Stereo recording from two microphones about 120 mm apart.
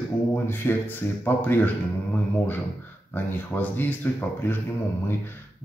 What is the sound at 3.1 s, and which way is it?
Speech, 15° left (ahead or behind).